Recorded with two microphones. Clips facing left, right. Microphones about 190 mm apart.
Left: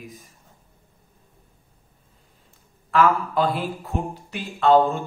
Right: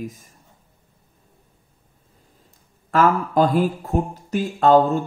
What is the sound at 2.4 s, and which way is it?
A man's voice, 40° right (ahead or behind).